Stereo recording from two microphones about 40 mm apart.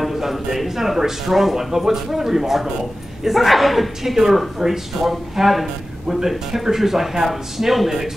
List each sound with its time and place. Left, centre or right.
0.0 s a man's voice: centre